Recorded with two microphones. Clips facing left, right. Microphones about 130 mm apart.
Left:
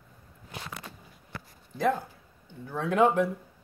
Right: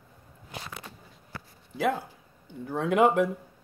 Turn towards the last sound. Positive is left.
turn(degrees=-10)  # may be behind; listen again after turning